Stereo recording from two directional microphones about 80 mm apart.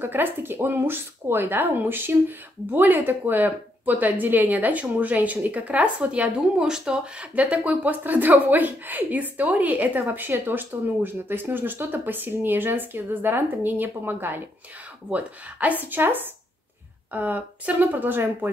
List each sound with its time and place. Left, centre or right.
0.0 s speech: right